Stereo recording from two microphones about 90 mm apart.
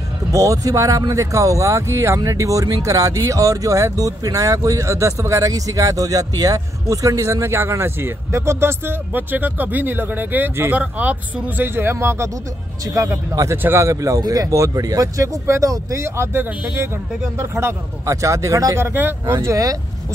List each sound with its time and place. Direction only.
0.3 s speech: 35° right (ahead or behind)
12.8 s speech: 40° right (ahead or behind)